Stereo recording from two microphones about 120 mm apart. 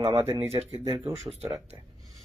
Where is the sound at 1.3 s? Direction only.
25° right (ahead or behind).